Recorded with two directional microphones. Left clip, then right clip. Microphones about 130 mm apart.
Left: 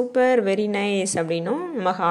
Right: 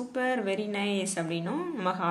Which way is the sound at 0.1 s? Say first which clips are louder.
Left 9 dB; 55° left (ahead or behind).